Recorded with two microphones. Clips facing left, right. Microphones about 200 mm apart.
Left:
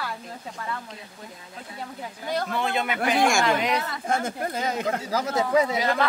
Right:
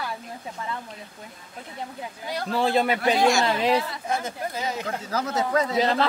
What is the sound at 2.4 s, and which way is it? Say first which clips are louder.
A man's voice: right 9 dB; 30° right (ahead or behind).